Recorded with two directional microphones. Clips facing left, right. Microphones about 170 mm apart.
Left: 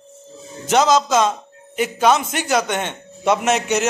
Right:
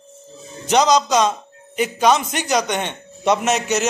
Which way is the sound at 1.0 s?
5° left (ahead or behind).